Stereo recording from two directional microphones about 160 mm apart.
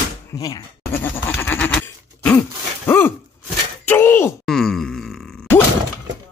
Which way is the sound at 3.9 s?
15° left (ahead or behind).